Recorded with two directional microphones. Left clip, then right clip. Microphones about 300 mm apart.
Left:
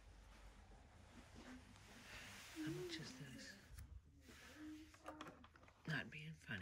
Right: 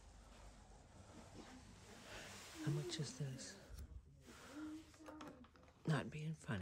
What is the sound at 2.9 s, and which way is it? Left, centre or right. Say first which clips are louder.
Speech: right 4 dB; centre.